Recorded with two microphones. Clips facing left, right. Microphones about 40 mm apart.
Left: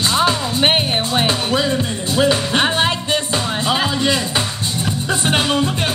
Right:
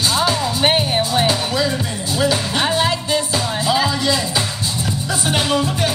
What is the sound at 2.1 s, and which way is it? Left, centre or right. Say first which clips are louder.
Music: left 3 dB; left.